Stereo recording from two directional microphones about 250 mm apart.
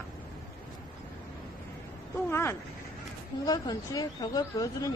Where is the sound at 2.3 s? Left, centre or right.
Centre.